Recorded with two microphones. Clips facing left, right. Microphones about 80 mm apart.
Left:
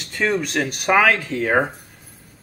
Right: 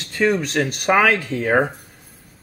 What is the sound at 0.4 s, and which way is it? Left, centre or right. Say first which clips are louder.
Speech: right 1 dB; centre.